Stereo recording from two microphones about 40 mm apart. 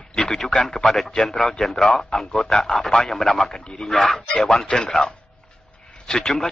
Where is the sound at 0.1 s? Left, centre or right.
Centre.